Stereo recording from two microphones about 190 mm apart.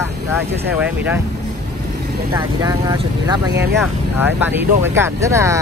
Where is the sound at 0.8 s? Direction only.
10° right (ahead or behind).